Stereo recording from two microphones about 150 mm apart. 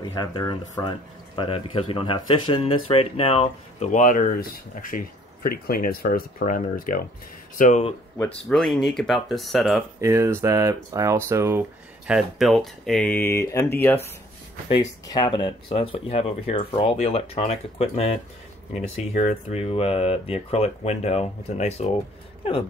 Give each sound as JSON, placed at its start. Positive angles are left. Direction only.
{"t": 0.0, "sound": "speech", "side_deg": 30}
{"t": 3.9, "sound": "speech", "side_deg": 60}
{"t": 8.5, "sound": "speech", "side_deg": 5}
{"t": 9.9, "sound": "speech", "side_deg": -20}
{"t": 12.1, "sound": "speech", "side_deg": 0}
{"t": 14.8, "sound": "speech", "side_deg": 25}